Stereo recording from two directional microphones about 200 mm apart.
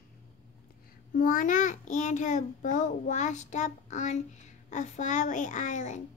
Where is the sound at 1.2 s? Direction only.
45° left (ahead or behind).